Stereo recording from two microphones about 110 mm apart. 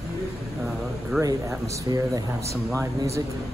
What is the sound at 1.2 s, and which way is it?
Speech, 30° right (ahead or behind).